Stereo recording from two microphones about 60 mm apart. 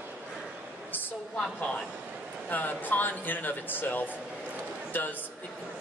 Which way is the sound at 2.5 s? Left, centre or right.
Left.